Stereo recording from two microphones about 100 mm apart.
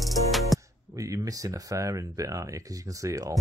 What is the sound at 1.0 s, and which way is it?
Speech, 35° right (ahead or behind).